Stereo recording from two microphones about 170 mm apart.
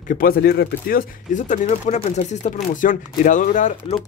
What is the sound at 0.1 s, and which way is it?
Speech, 60° left (ahead or behind).